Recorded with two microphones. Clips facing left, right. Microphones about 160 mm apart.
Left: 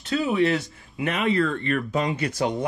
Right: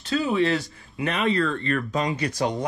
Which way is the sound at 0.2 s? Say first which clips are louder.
Left 1 dB; 20° left (ahead or behind).